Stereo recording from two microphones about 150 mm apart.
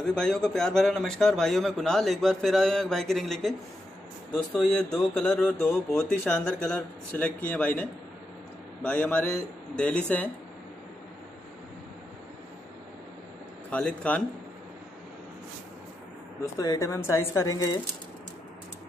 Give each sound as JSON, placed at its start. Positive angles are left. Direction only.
{"t": 0.0, "sound": "a man's voice", "side_deg": 5}
{"t": 8.8, "sound": "speech", "side_deg": 10}
{"t": 13.7, "sound": "speech", "side_deg": 10}
{"t": 16.5, "sound": "speech", "side_deg": 20}